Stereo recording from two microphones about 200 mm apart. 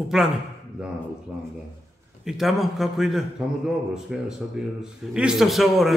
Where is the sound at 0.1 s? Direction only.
Centre (ahead or behind).